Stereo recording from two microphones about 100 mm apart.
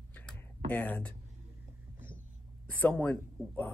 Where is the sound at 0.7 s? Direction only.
15° left (ahead or behind).